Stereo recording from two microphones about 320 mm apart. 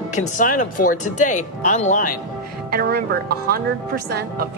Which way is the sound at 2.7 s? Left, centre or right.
Right.